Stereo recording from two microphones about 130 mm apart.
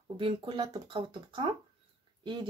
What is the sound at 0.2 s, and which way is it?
Speech, 35° right (ahead or behind).